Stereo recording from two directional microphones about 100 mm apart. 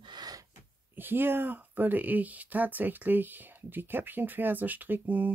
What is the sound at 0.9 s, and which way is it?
Speech, 20° right (ahead or behind).